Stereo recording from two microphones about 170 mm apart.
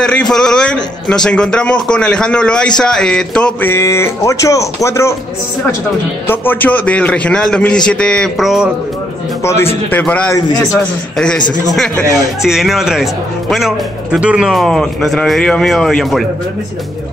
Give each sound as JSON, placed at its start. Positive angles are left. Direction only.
{"t": 0.0, "sound": "a man's voice", "side_deg": 5}
{"t": 6.2, "sound": "a man's voice", "side_deg": 10}
{"t": 9.4, "sound": "a man's voice", "side_deg": 15}
{"t": 12.5, "sound": "speech", "side_deg": 0}